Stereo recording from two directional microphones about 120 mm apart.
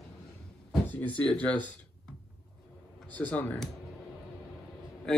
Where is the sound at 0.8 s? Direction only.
15° left (ahead or behind).